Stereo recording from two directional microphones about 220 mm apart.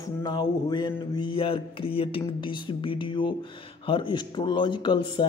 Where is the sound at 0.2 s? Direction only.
20° left (ahead or behind).